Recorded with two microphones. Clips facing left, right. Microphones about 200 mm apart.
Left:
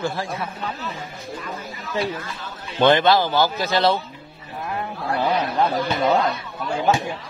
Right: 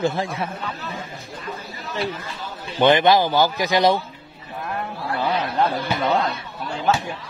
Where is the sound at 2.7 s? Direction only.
15° right (ahead or behind).